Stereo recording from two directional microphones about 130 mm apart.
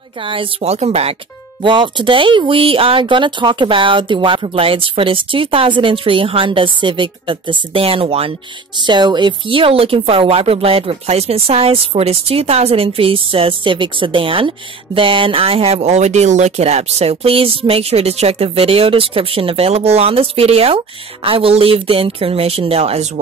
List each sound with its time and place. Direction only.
0.2 s speech: 45° right (ahead or behind)
1.6 s speech: 40° right (ahead or behind)